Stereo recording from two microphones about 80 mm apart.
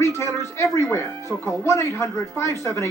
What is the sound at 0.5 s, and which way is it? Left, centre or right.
A woman's voice, left.